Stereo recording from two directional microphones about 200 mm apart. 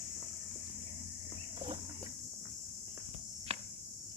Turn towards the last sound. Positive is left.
turn(degrees=-30)  # may be behind; listen again after turning